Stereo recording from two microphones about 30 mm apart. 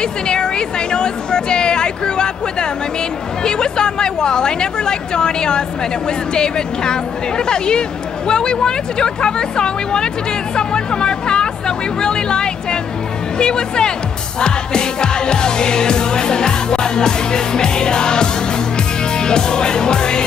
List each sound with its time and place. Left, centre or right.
0.0 s music: left